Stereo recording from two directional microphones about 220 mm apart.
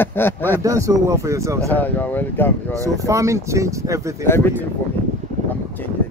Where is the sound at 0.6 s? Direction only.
15° right (ahead or behind).